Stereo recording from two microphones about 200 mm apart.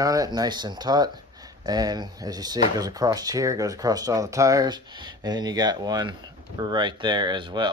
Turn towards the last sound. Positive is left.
turn(degrees=-20)  # may be behind; listen again after turning